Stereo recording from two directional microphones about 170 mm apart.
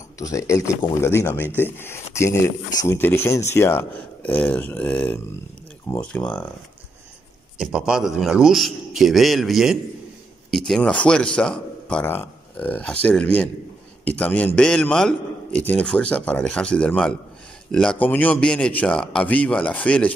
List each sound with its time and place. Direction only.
0.2 s speech: 15° left (ahead or behind)
7.5 s a man's voice: 5° right (ahead or behind)